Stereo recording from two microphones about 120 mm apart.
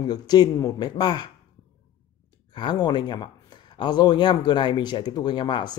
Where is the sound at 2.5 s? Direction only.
40° left (ahead or behind).